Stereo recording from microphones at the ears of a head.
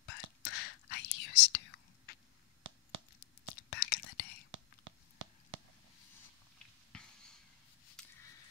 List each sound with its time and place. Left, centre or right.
0.0 s whispering: left
3.2 s whispering: left
4.5 s whispering: right
7.8 s a sound: left